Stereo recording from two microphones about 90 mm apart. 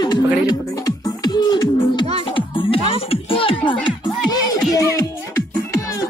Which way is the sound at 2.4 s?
80° left.